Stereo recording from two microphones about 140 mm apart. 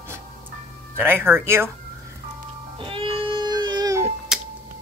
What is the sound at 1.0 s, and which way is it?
Speech, 15° right (ahead or behind).